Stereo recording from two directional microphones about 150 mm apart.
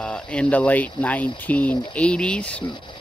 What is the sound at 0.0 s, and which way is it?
Speech, 5° left (ahead or behind).